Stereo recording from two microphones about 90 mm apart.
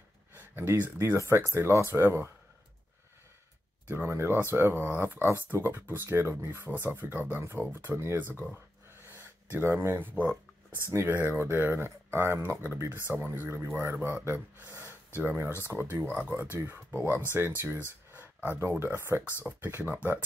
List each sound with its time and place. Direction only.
0.3 s speech: 25° right (ahead or behind)
3.9 s speech: 25° right (ahead or behind)
9.0 s a sound: 25° right (ahead or behind)
10.9 s speech: 25° right (ahead or behind)
13.9 s speech: 15° right (ahead or behind)